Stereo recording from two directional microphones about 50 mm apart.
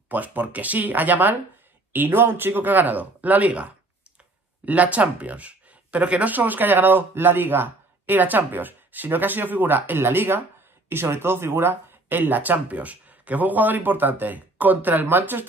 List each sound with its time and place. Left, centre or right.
0.1 s speech: right
1.9 s speech: right
6.3 s speech: right